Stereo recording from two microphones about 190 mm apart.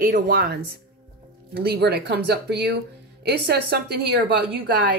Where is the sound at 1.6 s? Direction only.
60° right (ahead or behind).